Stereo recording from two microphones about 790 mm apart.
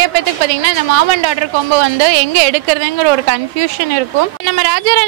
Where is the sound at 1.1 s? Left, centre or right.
Right.